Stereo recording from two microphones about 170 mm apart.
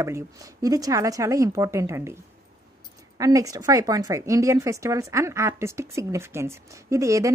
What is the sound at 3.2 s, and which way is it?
Speech, 20° right (ahead or behind).